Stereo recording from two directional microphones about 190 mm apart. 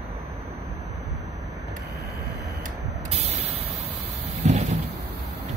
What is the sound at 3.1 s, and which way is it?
Vehicle, 35° right (ahead or behind).